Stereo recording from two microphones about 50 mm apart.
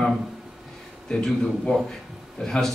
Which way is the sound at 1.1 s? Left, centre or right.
Centre.